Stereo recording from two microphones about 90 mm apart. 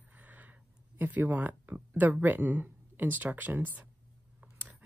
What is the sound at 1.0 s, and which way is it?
Speech, 20° right (ahead or behind).